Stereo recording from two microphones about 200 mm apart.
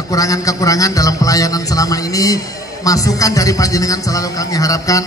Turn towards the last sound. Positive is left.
turn(degrees=15)  # may be behind; listen again after turning